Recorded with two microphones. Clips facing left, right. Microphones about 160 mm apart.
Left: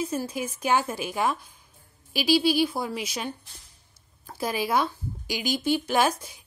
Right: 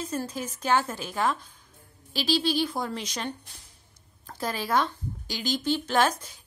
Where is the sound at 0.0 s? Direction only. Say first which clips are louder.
Left 3 dB; 10° left (ahead or behind).